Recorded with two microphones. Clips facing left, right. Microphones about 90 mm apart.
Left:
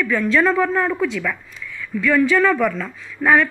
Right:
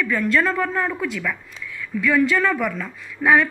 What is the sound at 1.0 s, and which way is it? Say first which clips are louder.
Speech: left 4 dB; centre (ahead or behind).